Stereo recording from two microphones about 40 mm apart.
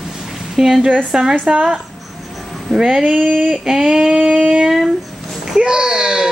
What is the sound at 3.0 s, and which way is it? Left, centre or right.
Speech, right.